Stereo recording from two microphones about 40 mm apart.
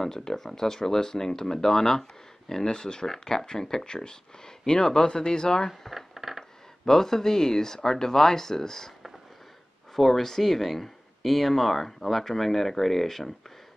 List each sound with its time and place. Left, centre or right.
0.0 s speech: centre
5.7 s a sound: centre
6.9 s speech: centre
9.9 s speech: centre